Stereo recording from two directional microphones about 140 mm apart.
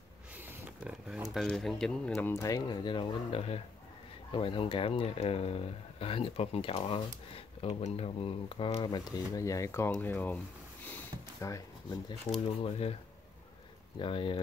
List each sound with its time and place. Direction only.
0.4 s a sound: 15° right (ahead or behind); by 2.3 s 5° left (ahead or behind)
2.3 s speech: 25° left (ahead or behind)
11.4 s speech: 25° left (ahead or behind)
12.6 s speech: 45° left (ahead or behind)
13.9 s speech: 35° left (ahead or behind)